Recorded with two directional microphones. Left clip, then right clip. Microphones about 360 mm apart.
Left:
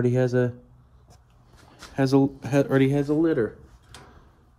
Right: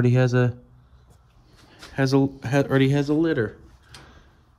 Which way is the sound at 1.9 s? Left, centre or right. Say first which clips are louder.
Even; centre.